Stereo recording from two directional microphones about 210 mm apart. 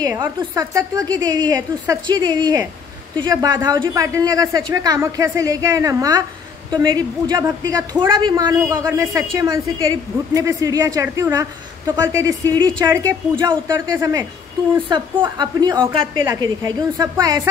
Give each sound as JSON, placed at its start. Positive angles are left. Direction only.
{"t": 0.0, "sound": "a woman's voice", "side_deg": -15}
{"t": 15.2, "sound": "a woman's voice", "side_deg": -20}